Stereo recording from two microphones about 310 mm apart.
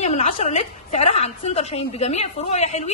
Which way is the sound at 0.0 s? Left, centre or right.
Left.